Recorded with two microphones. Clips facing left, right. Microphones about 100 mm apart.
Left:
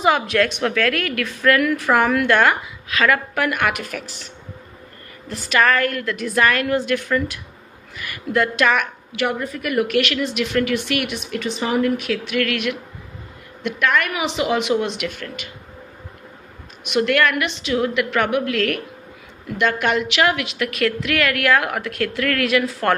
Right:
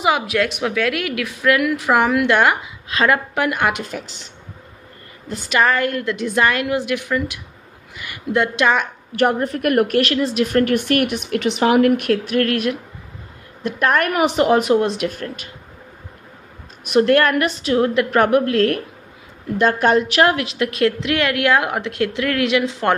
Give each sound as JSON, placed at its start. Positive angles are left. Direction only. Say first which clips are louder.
{"t": 0.0, "sound": "a woman's voice", "louder": "left 1 dB", "side_deg": -15}
{"t": 2.9, "sound": "a woman's voice", "louder": "right 1 dB", "side_deg": -30}
{"t": 5.3, "sound": "a woman's voice", "louder": "even", "side_deg": -20}
{"t": 9.1, "sound": "speech", "louder": "right 6 dB", "side_deg": -50}
{"t": 9.9, "sound": "speech", "louder": "right 3 dB", "side_deg": -35}
{"t": 12.4, "sound": "a woman's voice", "louder": "right 3 dB", "side_deg": -35}
{"t": 16.8, "sound": "a woman's voice", "louder": "right 4 dB", "side_deg": -35}